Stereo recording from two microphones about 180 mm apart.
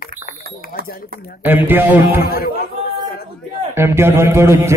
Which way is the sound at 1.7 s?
10° right (ahead or behind).